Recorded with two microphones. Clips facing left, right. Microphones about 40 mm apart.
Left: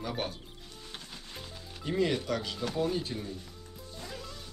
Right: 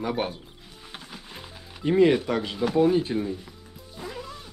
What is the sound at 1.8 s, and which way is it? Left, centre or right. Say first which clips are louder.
Speech: right 10 dB; right.